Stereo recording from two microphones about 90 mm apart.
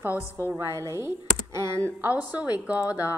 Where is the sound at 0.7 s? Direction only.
35° right (ahead or behind).